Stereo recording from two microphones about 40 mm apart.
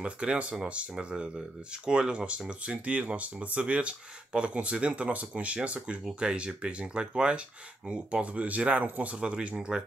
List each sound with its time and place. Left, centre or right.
0.0 s speech: right